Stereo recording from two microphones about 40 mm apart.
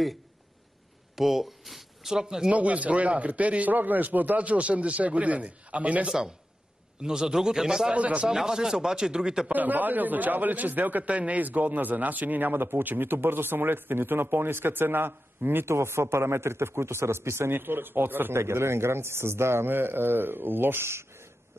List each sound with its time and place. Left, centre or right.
1.1 s a sound: centre
2.1 s speech: centre
2.5 s a man's voice: right
4.4 s a man's voice: right
6.0 s speech: centre
7.9 s a man's voice: right
8.3 s speech: centre
9.5 s a man's voice: right